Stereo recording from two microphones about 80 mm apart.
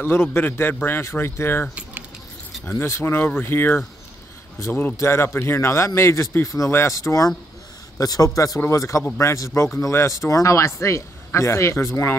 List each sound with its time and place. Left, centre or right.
0.0 s speech: left